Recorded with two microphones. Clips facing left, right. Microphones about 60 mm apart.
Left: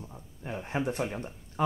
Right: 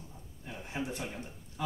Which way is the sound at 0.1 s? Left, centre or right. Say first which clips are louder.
Left 9 dB; left.